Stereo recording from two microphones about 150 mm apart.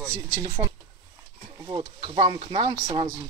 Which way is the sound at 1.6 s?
30° right (ahead or behind).